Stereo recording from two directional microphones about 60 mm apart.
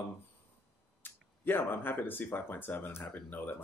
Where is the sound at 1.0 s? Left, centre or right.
Left.